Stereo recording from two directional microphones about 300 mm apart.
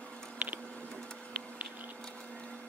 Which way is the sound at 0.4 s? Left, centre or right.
Centre.